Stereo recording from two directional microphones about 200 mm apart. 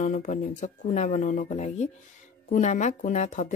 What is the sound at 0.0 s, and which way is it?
Speech, 40° left (ahead or behind).